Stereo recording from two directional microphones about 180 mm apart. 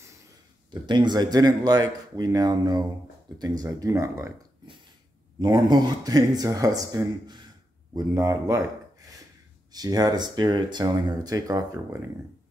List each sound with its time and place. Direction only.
0.8 s speech: 25° right (ahead or behind)
5.4 s speech: 20° right (ahead or behind)
9.7 s speech: 20° right (ahead or behind)